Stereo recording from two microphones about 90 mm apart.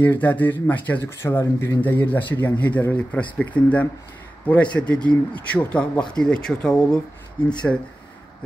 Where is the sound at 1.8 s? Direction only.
20° left (ahead or behind).